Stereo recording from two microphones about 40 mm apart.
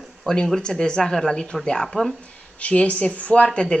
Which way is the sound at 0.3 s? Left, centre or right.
Left.